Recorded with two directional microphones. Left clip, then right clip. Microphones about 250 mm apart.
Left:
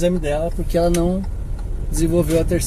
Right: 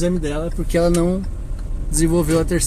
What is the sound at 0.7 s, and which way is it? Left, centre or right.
Speech, right.